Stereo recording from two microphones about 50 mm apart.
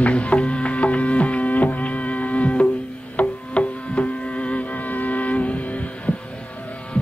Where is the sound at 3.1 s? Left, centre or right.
Left.